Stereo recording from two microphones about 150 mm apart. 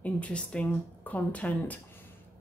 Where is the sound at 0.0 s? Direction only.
10° left (ahead or behind).